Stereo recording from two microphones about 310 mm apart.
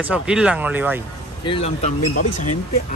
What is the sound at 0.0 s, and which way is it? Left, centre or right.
A man's voice, centre.